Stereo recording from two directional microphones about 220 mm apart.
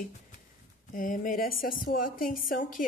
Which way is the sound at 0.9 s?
40° left (ahead or behind).